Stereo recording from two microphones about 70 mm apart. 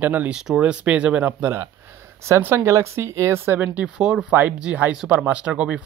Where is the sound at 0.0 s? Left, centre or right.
Right.